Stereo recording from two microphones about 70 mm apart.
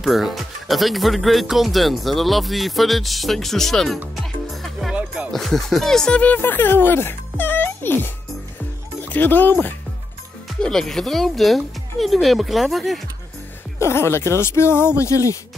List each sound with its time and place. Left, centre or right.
0.0 s speech: centre
4.1 s music: centre
4.9 s music: centre
5.3 s speech: centre; by 8.1 s left
9.1 s speech: left
10.6 s speech: centre
13.7 s speech: left